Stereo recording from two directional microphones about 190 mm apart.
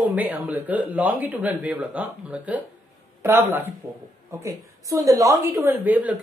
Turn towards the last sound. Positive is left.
turn(degrees=-10)  # may be behind; listen again after turning